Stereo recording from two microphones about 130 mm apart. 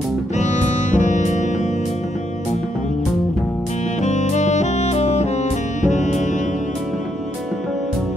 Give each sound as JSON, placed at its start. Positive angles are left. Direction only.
{"t": 0.4, "sound": "music", "side_deg": 70}
{"t": 4.0, "sound": "saxophone", "side_deg": 65}
{"t": 5.8, "sound": "music", "side_deg": 65}